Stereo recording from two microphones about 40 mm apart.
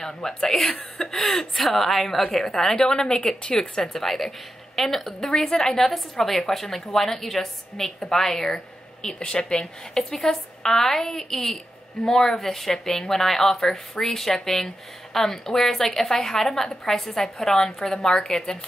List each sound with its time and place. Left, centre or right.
0.0 s speech: centre
0.6 s a woman's voice: left
1.1 s a woman's voice: centre
2.7 s a woman's voice: centre
8.5 s speech: centre